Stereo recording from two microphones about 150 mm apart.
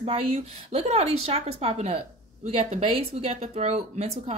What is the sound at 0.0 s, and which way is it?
Speech, 40° right (ahead or behind).